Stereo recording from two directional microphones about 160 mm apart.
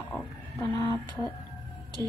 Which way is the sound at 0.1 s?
20° left (ahead or behind).